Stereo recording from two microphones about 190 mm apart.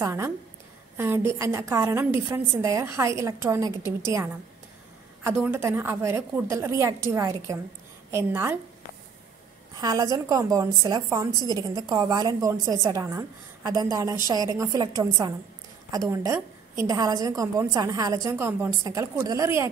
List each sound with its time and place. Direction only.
0.0 s a woman's voice: 15° right (ahead or behind)
5.4 s a woman's voice: 10° right (ahead or behind)
9.8 s a woman's voice: 20° right (ahead or behind)